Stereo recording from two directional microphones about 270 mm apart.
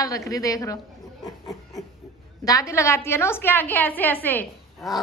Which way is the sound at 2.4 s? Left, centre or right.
Centre.